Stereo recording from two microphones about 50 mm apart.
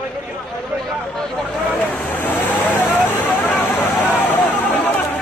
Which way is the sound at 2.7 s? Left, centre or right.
Left.